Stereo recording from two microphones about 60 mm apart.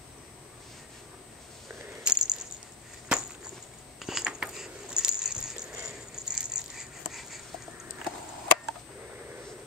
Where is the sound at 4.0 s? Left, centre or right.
Centre.